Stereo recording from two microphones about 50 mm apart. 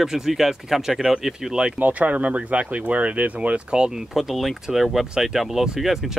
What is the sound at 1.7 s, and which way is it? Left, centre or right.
Speech, right.